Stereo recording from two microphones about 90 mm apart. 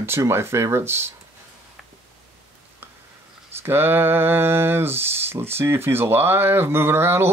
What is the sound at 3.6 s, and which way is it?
Speech, 25° right (ahead or behind).